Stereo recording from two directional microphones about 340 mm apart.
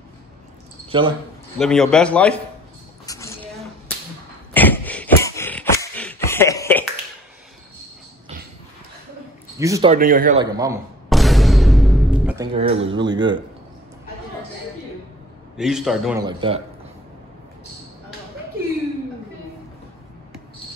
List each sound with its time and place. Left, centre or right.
0.8 s speech: centre
1.6 s a man's voice: centre
3.1 s a sound: centre
9.6 s speech: centre
10.4 s music: centre
12.5 s speech: centre
15.5 s a man's voice: centre